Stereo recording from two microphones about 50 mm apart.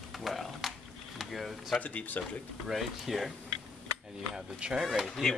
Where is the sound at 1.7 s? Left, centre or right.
Left.